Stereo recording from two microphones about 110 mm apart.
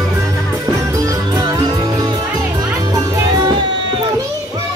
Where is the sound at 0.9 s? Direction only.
30° right (ahead or behind).